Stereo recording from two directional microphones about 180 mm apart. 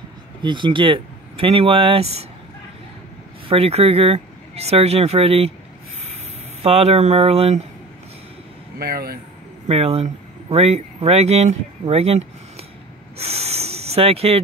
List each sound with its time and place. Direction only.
0.4 s speech: 25° right (ahead or behind)
3.4 s speech: 35° right (ahead or behind)
6.6 s speech: 35° right (ahead or behind)
8.7 s speech: 55° right (ahead or behind)
9.7 s speech: 35° right (ahead or behind)
13.2 s a sound: 35° right (ahead or behind)